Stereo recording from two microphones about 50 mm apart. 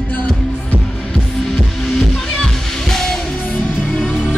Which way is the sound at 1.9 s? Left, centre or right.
Centre.